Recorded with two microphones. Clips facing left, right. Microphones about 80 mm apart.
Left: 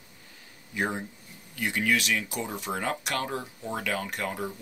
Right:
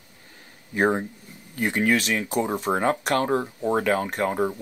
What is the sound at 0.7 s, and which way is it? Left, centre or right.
Speech, right.